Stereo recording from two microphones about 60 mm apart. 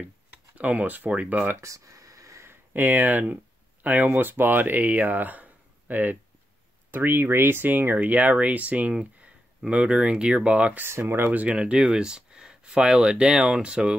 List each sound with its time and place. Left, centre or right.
0.6 s speech: right
1.6 s a sound: right
2.7 s speech: right
10.8 s speech: right
11.4 s speech: centre